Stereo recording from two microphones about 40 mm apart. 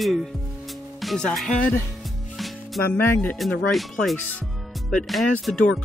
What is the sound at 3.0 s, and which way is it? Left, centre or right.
Speech, left.